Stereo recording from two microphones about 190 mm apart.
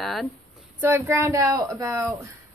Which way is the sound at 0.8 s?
15° right (ahead or behind).